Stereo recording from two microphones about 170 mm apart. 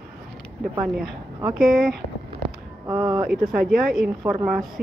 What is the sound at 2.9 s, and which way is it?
Speech, 25° right (ahead or behind).